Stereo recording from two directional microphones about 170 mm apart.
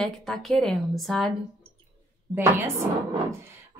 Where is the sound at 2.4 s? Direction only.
15° right (ahead or behind).